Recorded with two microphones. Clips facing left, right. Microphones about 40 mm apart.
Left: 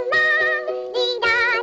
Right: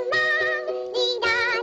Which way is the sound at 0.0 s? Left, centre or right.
Centre.